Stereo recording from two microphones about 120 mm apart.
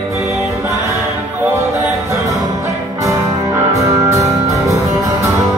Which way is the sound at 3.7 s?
25° right (ahead or behind).